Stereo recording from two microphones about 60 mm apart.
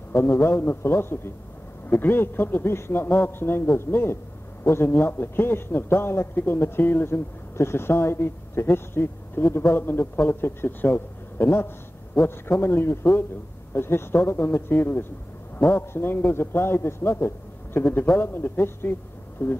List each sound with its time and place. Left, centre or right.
0.1 s a man's voice: left
1.9 s a man's voice: left